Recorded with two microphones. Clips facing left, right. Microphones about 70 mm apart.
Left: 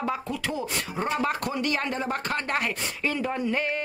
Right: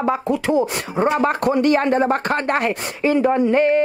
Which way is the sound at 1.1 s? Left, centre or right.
Right.